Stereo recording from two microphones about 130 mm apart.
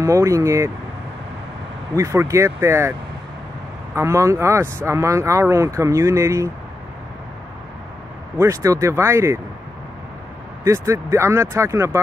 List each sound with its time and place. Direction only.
0.0 s speech: 25° right (ahead or behind)
2.0 s speech: 25° right (ahead or behind)
3.9 s speech: 20° right (ahead or behind)
8.4 s speech: 20° right (ahead or behind)
10.6 s speech: 20° right (ahead or behind)